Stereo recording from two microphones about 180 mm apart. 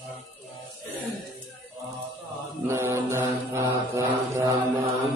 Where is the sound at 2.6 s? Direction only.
15° right (ahead or behind).